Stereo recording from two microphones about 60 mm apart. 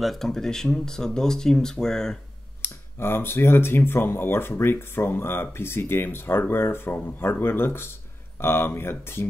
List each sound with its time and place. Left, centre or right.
0.0 s speech: centre
2.6 s speech: left